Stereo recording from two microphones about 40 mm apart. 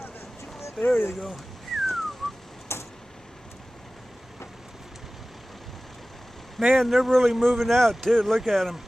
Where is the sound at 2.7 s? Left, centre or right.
Left.